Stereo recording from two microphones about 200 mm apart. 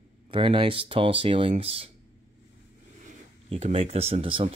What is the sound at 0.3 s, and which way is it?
Speech, 25° right (ahead or behind).